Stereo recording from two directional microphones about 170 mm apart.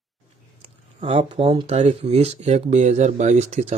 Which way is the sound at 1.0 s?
40° right (ahead or behind).